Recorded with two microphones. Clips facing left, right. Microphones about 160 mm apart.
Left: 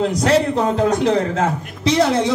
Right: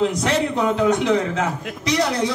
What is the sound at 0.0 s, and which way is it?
A man's voice, 35° left (ahead or behind).